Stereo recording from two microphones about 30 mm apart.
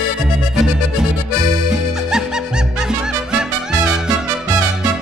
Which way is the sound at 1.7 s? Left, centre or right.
Right.